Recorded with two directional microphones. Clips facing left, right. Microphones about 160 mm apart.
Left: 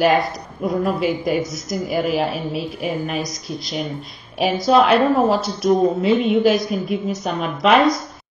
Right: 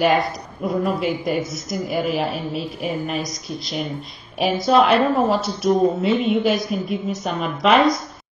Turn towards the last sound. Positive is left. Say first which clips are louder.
# left 1 dB
turn(degrees=0)  # may be behind; listen again after turning